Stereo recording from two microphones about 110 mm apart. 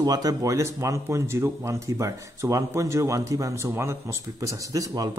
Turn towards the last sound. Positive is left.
turn(degrees=-35)  # may be behind; listen again after turning